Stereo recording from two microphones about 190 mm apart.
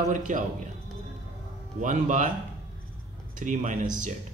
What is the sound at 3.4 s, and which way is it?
Speech, 40° right (ahead or behind).